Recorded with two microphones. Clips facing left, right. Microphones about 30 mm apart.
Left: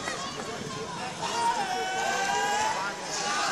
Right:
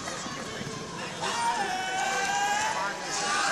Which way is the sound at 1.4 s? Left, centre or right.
Centre.